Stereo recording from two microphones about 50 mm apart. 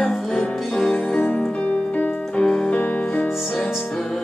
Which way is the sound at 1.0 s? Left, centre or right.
Left.